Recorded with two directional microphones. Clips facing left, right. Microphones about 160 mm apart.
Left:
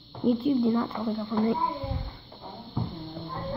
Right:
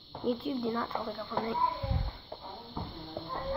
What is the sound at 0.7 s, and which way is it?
Speech, 20° left (ahead or behind).